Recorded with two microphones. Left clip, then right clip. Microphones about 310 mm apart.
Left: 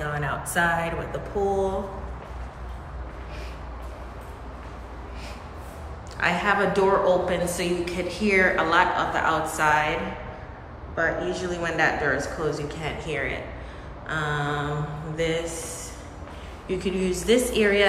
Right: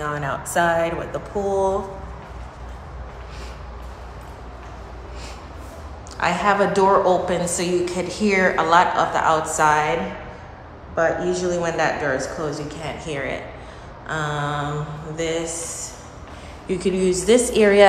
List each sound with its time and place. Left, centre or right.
0.0 s a woman's voice: centre
6.1 s a woman's voice: centre
11.0 s a woman's voice: centre